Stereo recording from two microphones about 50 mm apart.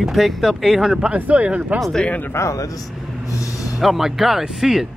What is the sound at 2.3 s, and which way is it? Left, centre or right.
Speech, left.